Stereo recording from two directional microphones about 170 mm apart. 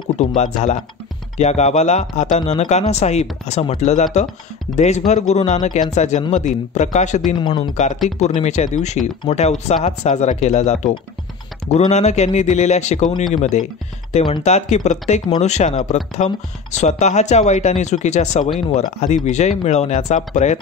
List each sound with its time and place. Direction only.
0.2 s speech: 40° left (ahead or behind)
7.4 s speech: 25° left (ahead or behind)
7.7 s speech: 45° left (ahead or behind)